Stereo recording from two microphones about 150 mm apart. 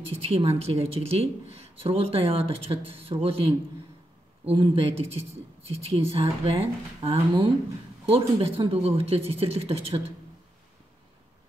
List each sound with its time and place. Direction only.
0.1 s speech: 40° right (ahead or behind)